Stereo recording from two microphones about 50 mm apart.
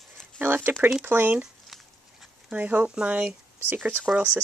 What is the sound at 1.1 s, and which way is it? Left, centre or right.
Speech, right.